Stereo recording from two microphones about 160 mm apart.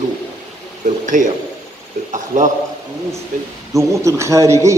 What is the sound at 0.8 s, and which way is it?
Speech, 55° right (ahead or behind).